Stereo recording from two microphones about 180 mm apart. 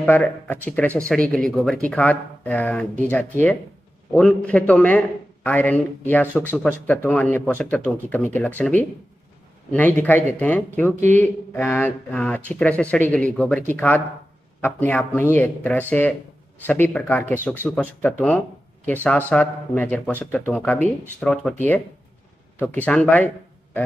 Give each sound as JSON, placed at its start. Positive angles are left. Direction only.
{"t": 0.0, "sound": "speech", "side_deg": 10}
{"t": 22.8, "sound": "speech", "side_deg": 10}